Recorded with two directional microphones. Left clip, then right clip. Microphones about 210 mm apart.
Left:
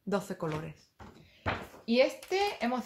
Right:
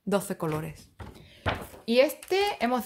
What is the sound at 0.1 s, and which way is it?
Speech, 35° right (ahead or behind).